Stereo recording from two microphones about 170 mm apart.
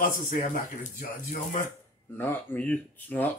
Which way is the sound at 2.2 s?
10° left (ahead or behind).